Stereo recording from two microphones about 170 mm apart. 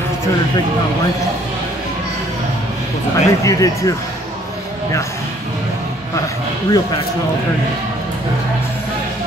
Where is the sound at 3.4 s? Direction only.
20° left (ahead or behind).